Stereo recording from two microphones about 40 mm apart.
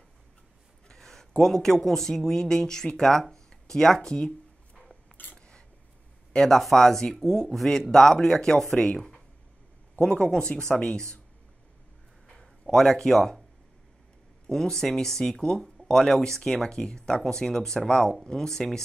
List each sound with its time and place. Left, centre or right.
0.8 s speech: centre
5.1 s a sound: left
6.3 s speech: centre
12.3 s speech: centre
14.5 s speech: centre